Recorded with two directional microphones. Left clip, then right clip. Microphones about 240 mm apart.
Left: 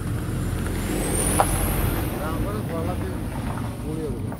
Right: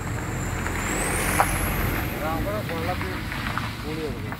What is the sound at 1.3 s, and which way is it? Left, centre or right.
Vehicle, left.